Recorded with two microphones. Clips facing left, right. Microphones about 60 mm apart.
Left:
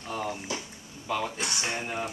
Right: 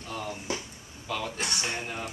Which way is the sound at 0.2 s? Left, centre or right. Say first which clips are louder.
Right 1 dB; left.